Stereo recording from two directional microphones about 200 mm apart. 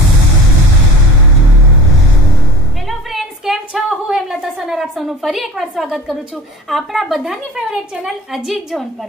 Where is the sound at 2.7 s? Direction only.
Centre (ahead or behind).